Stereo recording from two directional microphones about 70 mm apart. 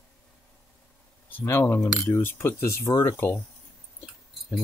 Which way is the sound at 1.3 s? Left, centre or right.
Left.